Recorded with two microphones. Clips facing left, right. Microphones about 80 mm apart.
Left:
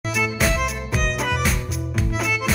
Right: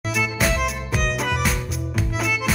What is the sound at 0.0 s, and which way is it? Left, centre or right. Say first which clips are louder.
Music: left 1 dB; centre.